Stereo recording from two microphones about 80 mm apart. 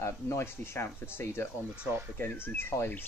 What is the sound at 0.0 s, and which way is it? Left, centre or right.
Speech, left.